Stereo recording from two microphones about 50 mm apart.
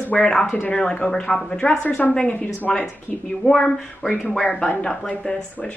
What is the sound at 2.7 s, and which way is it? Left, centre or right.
Speech, centre.